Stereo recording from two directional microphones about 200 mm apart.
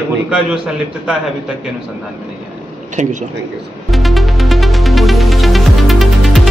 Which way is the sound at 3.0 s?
40° right (ahead or behind).